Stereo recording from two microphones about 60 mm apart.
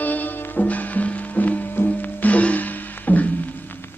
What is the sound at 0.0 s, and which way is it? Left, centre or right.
Music, left.